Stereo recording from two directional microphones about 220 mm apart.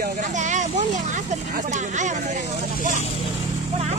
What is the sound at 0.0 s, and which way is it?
Vehicle, 35° right (ahead or behind).